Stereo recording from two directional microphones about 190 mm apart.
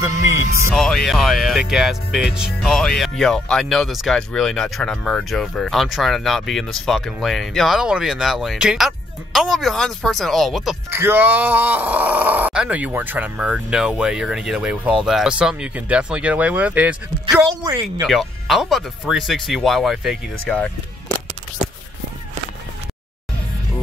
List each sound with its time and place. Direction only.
0.0 s speech: 15° right (ahead or behind)
0.7 s speech: centre (ahead or behind)
17.5 s speech: 20° right (ahead or behind)
18.0 s speech: centre (ahead or behind)